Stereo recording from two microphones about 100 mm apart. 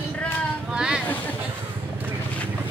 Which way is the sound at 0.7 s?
10° right (ahead or behind).